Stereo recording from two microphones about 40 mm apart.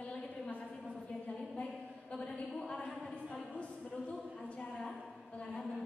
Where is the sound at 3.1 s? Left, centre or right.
Left.